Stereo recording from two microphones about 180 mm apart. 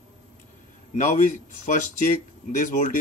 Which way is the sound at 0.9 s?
40° left (ahead or behind).